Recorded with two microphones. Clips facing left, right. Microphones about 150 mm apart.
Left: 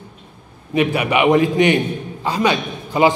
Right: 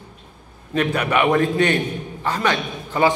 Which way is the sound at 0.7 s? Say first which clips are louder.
Left 3 dB; 10° left (ahead or behind).